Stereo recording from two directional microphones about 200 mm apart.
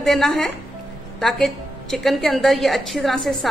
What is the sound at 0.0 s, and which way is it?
A woman's voice, centre (ahead or behind).